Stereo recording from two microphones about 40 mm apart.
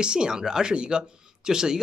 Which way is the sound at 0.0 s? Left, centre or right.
Right.